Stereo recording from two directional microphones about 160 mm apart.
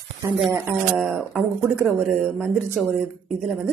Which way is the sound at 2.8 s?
Centre (ahead or behind).